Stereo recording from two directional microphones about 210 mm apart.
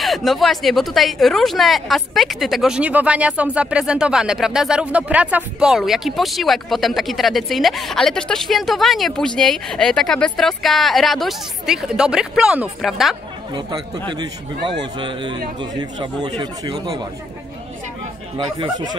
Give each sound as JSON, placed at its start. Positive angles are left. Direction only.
{"t": 0.0, "sound": "a woman's voice", "side_deg": 0}
{"t": 13.5, "sound": "a man's voice", "side_deg": -20}
{"t": 18.4, "sound": "a man's voice", "side_deg": -20}